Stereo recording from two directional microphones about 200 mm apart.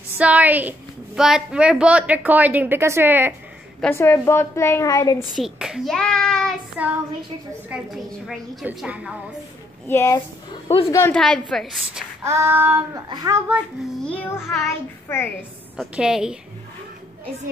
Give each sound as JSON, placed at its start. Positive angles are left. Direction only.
{"t": 0.2, "sound": "a woman's voice", "side_deg": -5}
{"t": 3.8, "sound": "a woman's voice", "side_deg": 10}
{"t": 5.3, "sound": "a woman's voice", "side_deg": 0}
{"t": 6.8, "sound": "a woman's voice", "side_deg": -5}
{"t": 9.8, "sound": "a woman's voice", "side_deg": 15}
{"t": 10.9, "sound": "a woman's voice", "side_deg": 10}
{"t": 12.3, "sound": "a woman's voice", "side_deg": -10}
{"t": 14.0, "sound": "a woman's voice", "side_deg": 5}
{"t": 15.8, "sound": "a woman's voice", "side_deg": -5}